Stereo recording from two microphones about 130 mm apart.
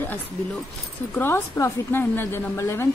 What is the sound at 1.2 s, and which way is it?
Speech, 15° left (ahead or behind).